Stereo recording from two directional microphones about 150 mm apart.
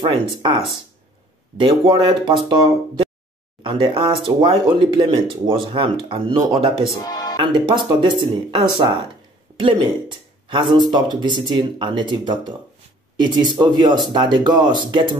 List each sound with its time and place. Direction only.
0.0 s speech: 30° right (ahead or behind)
1.6 s speech: 30° right (ahead or behind)
6.9 s speech: 25° left (ahead or behind)
7.5 s speech: 30° right (ahead or behind)